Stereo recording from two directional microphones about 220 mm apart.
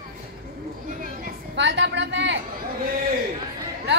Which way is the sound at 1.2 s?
50° right (ahead or behind).